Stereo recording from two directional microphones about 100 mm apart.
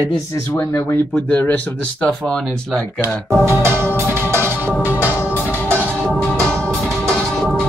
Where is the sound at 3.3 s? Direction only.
25° right (ahead or behind).